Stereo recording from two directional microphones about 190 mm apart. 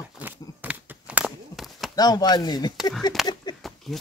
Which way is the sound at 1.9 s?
20° left (ahead or behind).